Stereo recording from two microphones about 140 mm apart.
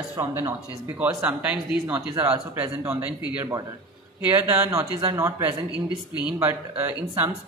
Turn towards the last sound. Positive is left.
turn(degrees=-15)  # may be behind; listen again after turning